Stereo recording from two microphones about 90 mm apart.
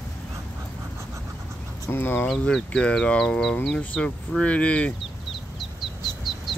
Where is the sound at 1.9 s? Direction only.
25° left (ahead or behind).